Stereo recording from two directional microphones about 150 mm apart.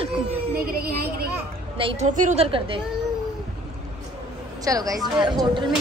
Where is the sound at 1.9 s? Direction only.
55° right (ahead or behind); by 2.8 s 40° right (ahead or behind).